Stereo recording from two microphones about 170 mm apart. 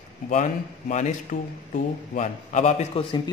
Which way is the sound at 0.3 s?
45° left (ahead or behind).